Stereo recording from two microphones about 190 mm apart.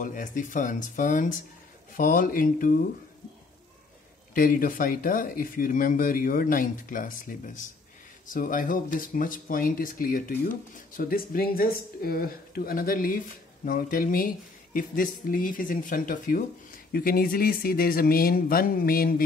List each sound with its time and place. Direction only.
0.0 s speech: 45° left (ahead or behind)
4.3 s speech: 45° left (ahead or behind)